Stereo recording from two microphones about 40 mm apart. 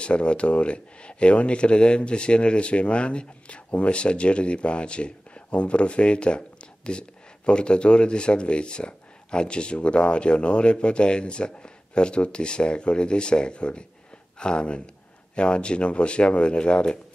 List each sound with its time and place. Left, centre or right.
0.0 s speech: left